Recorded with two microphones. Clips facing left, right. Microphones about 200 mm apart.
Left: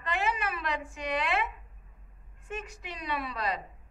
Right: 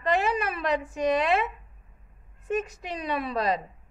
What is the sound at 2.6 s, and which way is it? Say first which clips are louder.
A woman's voice: right 8 dB; 40° right (ahead or behind).